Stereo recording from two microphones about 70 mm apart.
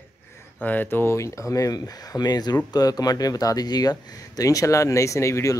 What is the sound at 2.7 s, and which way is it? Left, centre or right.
Speech, left.